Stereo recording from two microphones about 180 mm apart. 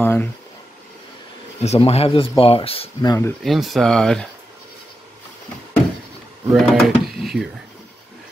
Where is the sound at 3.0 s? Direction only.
20° left (ahead or behind).